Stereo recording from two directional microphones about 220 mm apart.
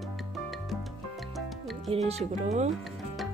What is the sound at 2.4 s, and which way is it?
Speech, 30° right (ahead or behind).